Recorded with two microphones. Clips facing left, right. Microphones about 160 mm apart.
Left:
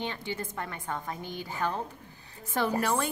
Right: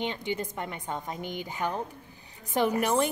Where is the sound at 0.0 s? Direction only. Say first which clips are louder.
Right 3 dB; 20° right (ahead or behind).